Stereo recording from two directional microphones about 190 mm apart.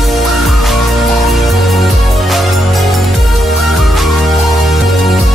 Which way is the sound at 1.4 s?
Centre (ahead or behind).